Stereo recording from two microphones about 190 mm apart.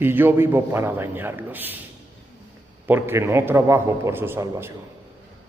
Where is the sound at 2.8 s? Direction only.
10° right (ahead or behind).